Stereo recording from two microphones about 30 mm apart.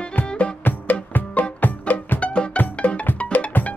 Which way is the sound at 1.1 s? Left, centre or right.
Left.